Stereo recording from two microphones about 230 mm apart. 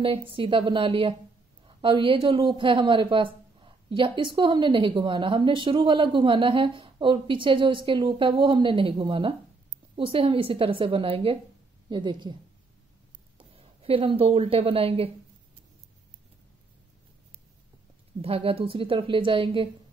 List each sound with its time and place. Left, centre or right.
0.0 s speech: right
13.5 s a woman's voice: right
18.2 s speech: right